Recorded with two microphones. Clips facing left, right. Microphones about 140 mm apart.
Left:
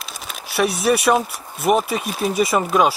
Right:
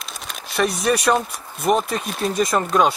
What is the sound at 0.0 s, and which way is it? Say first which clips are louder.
Speech: left 1 dB; centre (ahead or behind).